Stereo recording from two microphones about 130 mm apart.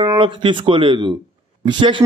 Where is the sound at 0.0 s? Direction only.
35° right (ahead or behind).